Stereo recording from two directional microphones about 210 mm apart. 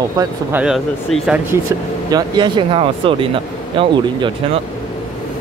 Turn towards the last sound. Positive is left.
turn(degrees=-25)  # may be behind; listen again after turning